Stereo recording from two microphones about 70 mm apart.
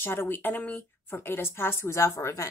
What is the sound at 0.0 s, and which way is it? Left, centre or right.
A woman's voice, left.